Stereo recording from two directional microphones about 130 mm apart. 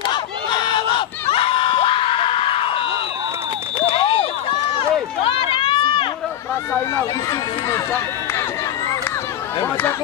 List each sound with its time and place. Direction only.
0.0 s crowd: 35° left (ahead or behind)
1.3 s screaming: 45° left (ahead or behind)
3.9 s a sound: 45° left (ahead or behind)
5.2 s run: 45° left (ahead or behind)
6.7 s run: 20° left (ahead or behind)